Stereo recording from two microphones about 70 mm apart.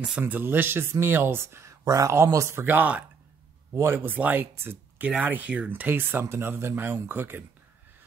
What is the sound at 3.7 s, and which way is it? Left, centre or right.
Speech, right.